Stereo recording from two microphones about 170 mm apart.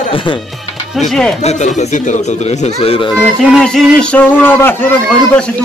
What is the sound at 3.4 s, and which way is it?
Speech, centre (ahead or behind).